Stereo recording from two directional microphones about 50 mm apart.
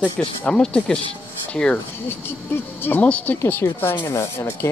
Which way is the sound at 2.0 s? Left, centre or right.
Left.